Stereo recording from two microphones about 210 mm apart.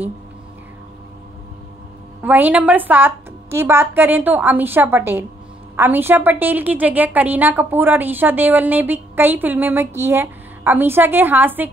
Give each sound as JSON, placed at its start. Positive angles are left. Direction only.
{"t": 2.2, "sound": "a woman's voice", "side_deg": -10}